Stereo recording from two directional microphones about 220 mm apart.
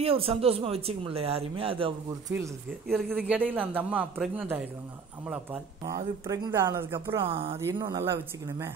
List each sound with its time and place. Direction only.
0.0 s speech: 25° right (ahead or behind)
2.9 s speech: centre (ahead or behind)
7.1 s speech: 25° right (ahead or behind)
7.5 s speech: 15° right (ahead or behind)